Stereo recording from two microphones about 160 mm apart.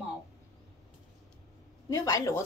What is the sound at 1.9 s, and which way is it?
Speech, 20° left (ahead or behind).